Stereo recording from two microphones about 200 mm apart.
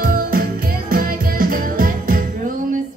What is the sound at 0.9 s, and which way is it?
Jingle bell, 45° right (ahead or behind).